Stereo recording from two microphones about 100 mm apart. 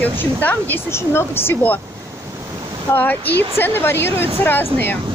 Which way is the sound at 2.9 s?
20° left (ahead or behind).